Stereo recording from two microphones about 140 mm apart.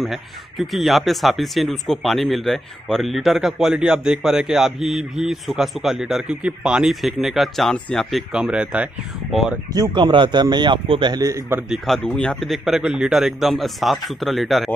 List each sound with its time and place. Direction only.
0.0 s speech: centre (ahead or behind)
9.7 s speech: 30° right (ahead or behind)
11.7 s speech: centre (ahead or behind)